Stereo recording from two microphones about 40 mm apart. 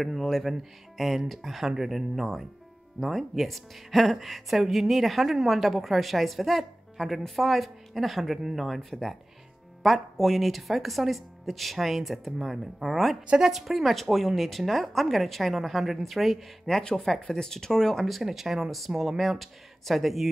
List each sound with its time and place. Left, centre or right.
0.0 s speech: centre
10.1 s speech: centre
18.2 s speech: centre